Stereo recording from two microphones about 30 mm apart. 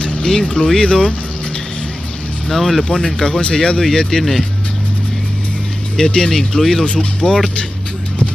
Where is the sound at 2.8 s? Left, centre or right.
Left.